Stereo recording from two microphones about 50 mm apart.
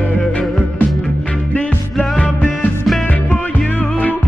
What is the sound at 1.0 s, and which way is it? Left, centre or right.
Music, centre.